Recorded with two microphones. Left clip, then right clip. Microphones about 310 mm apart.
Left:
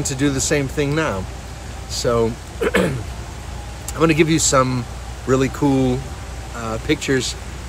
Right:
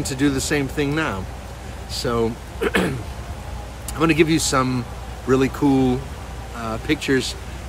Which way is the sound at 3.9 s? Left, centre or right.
Centre.